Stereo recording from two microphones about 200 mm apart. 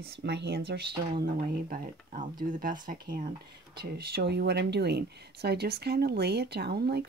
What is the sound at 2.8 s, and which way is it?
Speech, 45° right (ahead or behind).